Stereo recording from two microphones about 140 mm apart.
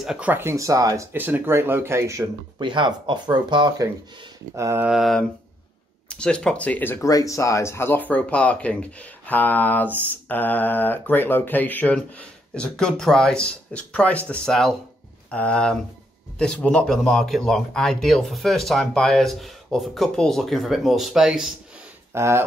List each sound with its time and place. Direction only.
0.0 s speech: 10° right (ahead or behind)
2.6 s speech: 35° right (ahead or behind)
4.6 s mantra: 20° right (ahead or behind)
4.8 s speech: centre (ahead or behind)
22.1 s speech: 20° right (ahead or behind)